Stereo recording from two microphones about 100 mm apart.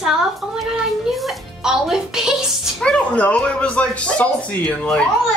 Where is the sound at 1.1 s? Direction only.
5° right (ahead or behind).